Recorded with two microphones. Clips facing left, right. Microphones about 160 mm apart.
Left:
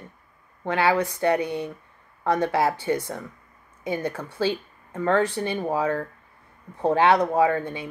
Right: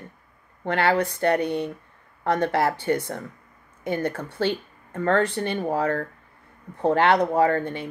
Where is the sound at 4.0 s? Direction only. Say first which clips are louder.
Even; 60° right (ahead or behind).